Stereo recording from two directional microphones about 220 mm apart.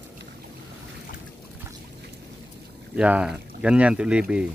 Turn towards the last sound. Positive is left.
turn(degrees=-5)  # may be behind; listen again after turning